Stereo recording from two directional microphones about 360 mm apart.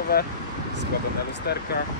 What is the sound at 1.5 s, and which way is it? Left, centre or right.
Speech, left.